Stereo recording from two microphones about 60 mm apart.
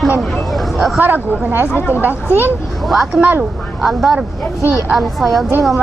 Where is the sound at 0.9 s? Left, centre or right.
Right.